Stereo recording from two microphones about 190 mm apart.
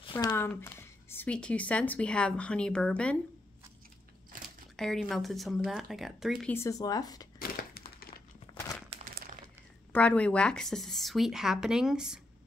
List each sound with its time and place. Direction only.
0.1 s speech: 15° left (ahead or behind)
4.7 s speech: centre (ahead or behind)
6.5 s speech: 15° left (ahead or behind)
7.3 s crumpling: 50° left (ahead or behind)
8.5 s crumpling: 10° left (ahead or behind)
9.0 s crumpling: 50° right (ahead or behind)
9.9 s speech: 5° left (ahead or behind)